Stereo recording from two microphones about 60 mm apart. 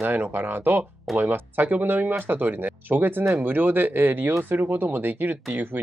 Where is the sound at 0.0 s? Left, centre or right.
Right.